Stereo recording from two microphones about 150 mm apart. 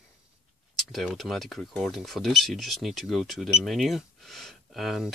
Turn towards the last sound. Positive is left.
turn(degrees=0)  # may be behind; listen again after turning